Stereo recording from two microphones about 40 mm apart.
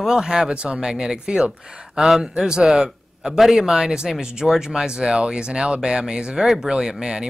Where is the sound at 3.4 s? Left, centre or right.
Centre.